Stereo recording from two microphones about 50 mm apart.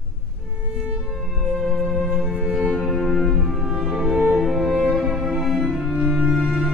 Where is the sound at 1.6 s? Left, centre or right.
Centre.